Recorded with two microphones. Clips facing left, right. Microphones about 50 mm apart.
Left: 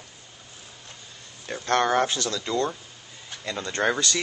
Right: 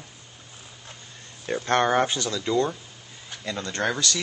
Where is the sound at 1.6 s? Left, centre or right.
Centre.